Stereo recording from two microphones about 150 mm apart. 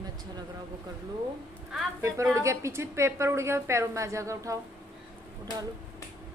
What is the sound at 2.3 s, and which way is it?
A woman's voice, 20° right (ahead or behind).